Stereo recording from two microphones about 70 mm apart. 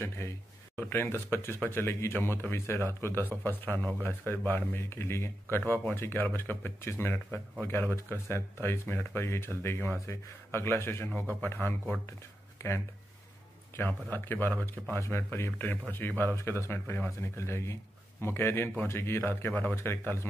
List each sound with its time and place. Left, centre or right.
0.7 s speech: left
12.2 s a sound: left
13.8 s speech: left
15.0 s speech: left
16.3 s speech: left